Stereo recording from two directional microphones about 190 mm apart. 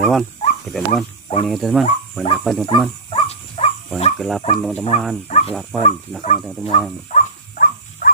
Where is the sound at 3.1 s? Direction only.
35° left (ahead or behind).